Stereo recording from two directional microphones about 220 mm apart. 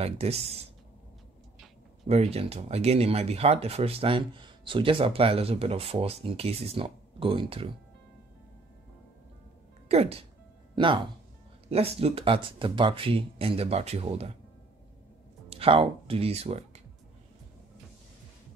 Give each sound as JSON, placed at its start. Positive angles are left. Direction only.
{"t": 0.0, "sound": "speech", "side_deg": -30}
{"t": 2.0, "sound": "speech", "side_deg": -30}
{"t": 9.8, "sound": "speech", "side_deg": -30}
{"t": 11.7, "sound": "speech", "side_deg": -25}
{"t": 15.5, "sound": "speech", "side_deg": -25}